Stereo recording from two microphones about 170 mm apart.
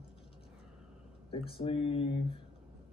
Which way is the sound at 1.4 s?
30° left (ahead or behind).